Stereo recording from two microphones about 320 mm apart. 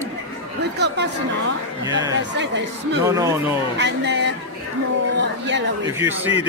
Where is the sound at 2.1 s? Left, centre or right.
Right.